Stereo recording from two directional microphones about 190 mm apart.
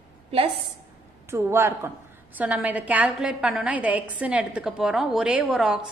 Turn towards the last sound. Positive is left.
turn(degrees=-5)  # may be behind; listen again after turning